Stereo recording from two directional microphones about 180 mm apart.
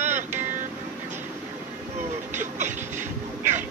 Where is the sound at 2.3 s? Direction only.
45° right (ahead or behind).